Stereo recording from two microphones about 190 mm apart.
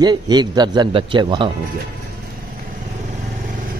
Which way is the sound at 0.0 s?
20° right (ahead or behind).